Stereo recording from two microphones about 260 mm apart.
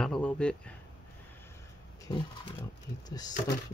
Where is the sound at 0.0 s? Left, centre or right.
Centre.